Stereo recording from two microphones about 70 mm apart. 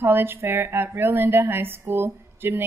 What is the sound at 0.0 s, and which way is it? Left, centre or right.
A woman's voice, right.